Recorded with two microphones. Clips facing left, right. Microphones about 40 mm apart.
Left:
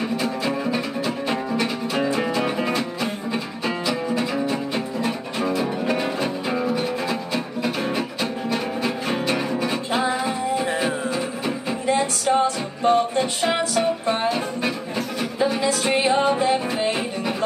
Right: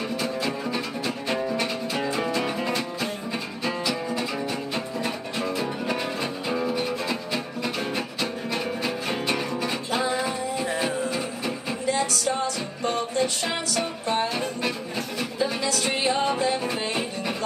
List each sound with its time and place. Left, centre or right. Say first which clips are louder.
0.7 s music: left 4 dB; centre
2.0 s music: left 4 dB; left
11.8 s music: left 3 dB; left
14.3 s music: left 3 dB; centre
15.3 s music: left 5 dB; left